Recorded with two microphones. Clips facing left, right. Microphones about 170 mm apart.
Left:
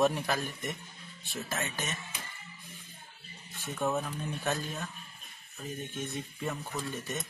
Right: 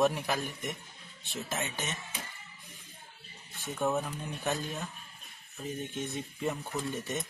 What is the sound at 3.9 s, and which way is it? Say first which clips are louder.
Speech: right 1 dB; centre (ahead or behind).